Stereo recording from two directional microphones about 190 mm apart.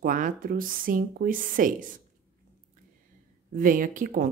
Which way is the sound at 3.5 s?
45° right (ahead or behind).